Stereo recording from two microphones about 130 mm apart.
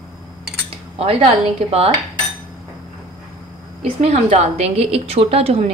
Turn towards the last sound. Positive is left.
turn(degrees=-50)  # may be behind; listen again after turning